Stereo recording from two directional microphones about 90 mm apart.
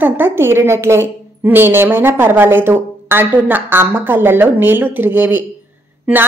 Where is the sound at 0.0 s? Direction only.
25° right (ahead or behind).